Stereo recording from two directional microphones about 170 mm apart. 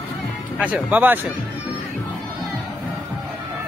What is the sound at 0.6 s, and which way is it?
Speech, 10° right (ahead or behind).